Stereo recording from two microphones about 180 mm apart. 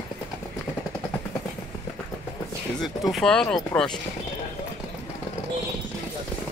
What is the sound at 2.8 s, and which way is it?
Speech, centre (ahead or behind).